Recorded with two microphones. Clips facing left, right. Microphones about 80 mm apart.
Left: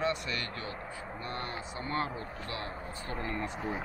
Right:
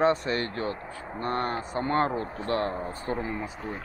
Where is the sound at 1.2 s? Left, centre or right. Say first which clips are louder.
Right 11 dB; right.